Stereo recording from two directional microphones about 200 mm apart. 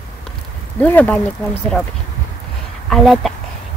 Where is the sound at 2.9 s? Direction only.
Centre (ahead or behind).